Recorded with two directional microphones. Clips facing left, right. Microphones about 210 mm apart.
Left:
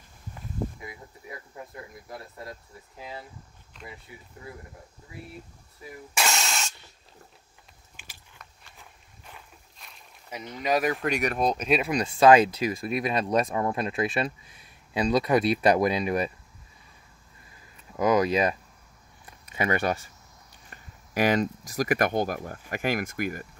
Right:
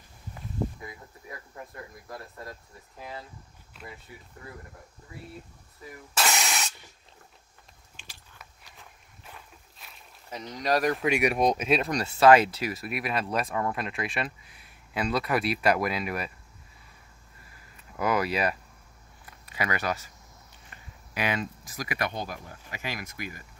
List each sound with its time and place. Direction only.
2.0 s speech: 25° left (ahead or behind)
3.8 s a sound: 5° right (ahead or behind)
6.3 s spray: 15° right (ahead or behind)
9.8 s a sound: 5° right (ahead or behind)
10.6 s speech: 5° left (ahead or behind)
12.6 s speech: 20° left (ahead or behind)
17.9 s speech: 20° left (ahead or behind)
20.7 s speech: 45° left (ahead or behind)